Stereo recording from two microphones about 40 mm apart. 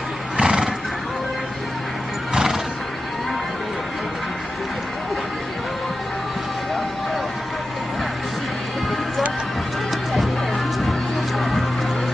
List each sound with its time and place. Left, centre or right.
0.4 s neigh: centre
2.3 s neigh: centre
10.8 s music: centre